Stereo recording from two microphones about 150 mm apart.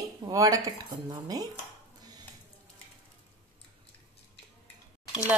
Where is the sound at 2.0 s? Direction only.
25° right (ahead or behind).